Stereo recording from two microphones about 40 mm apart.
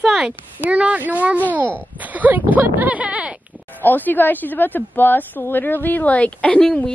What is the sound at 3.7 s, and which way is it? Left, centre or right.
A woman's voice, left.